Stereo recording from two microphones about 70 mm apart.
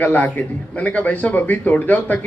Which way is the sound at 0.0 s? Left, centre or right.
Left.